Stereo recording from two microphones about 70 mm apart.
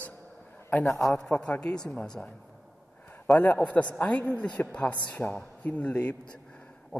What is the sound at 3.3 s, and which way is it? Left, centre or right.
A man's voice, left.